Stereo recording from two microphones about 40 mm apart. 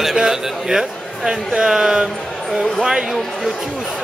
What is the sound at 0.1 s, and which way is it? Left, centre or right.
Speech, centre.